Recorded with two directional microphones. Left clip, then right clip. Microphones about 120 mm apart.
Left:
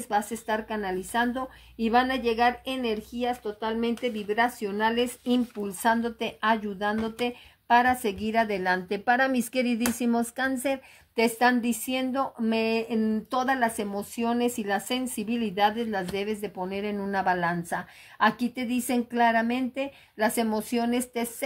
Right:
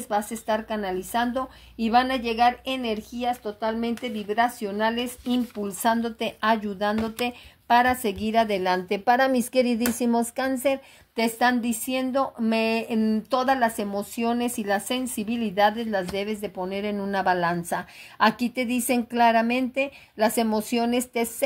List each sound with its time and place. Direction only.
0.1 s a woman's voice: 15° right (ahead or behind)
0.7 s a woman's voice: 25° right (ahead or behind)
12.4 s speech: 35° right (ahead or behind)